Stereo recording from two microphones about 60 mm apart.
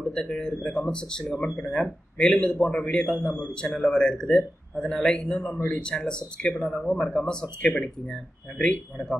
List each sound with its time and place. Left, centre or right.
0.0 s speech: centre